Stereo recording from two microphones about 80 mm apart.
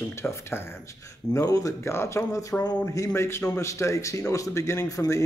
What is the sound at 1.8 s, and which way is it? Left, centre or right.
A man's voice, left.